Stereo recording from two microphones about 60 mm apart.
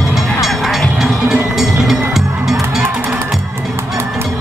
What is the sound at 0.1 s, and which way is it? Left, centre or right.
Music, centre.